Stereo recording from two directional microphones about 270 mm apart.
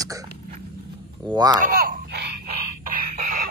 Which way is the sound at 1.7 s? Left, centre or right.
Right.